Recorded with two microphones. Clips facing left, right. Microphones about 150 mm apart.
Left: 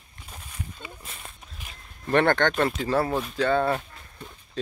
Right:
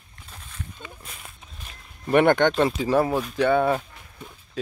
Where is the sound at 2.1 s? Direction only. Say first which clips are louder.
Right 3 dB; 15° right (ahead or behind).